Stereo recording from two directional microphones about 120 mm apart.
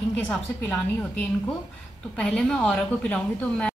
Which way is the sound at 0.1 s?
10° left (ahead or behind).